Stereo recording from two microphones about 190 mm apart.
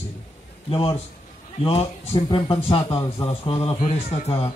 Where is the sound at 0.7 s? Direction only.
30° left (ahead or behind).